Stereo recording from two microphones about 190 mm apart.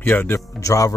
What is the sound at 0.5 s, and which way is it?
Speech, 15° left (ahead or behind).